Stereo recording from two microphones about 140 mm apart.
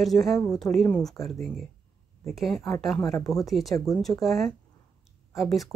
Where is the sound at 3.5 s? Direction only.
Centre (ahead or behind).